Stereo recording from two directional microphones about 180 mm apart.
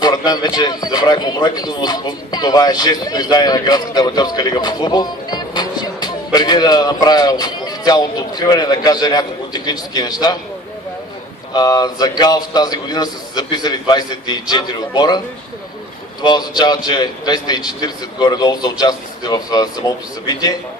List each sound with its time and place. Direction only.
0.0 s a man's voice: 20° left (ahead or behind)
11.5 s a man's voice: 20° left (ahead or behind)